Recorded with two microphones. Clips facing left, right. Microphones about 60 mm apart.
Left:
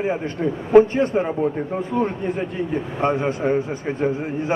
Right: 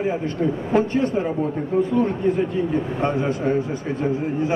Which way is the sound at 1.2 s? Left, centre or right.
Left.